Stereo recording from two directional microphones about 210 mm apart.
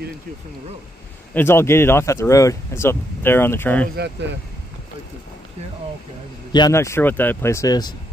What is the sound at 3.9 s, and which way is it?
Speech, 55° right (ahead or behind).